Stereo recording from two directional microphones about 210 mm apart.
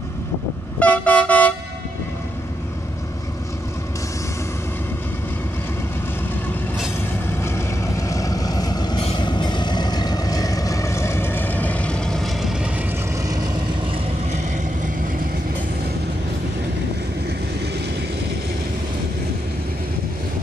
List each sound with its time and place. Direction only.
0.7 s vehicle: 5° left (ahead or behind)
7.4 s vehicle: 15° left (ahead or behind)